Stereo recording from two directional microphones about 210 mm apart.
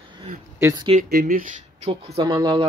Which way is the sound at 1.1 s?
40° right (ahead or behind).